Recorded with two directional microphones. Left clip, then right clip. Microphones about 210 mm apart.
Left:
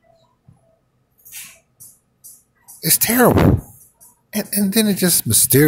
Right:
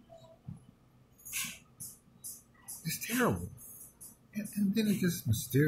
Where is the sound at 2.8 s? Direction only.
50° left (ahead or behind).